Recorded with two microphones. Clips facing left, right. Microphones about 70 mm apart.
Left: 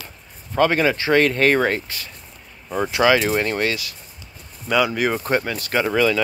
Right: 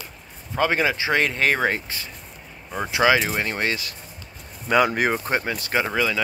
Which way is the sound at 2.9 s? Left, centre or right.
Centre.